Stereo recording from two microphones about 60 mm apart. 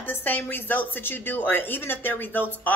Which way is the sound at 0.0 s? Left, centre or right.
Left.